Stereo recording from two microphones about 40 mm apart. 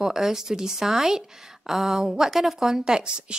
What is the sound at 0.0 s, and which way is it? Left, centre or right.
A woman's voice, centre.